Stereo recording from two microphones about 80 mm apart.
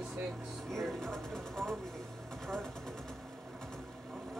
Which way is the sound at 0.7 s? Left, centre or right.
Centre.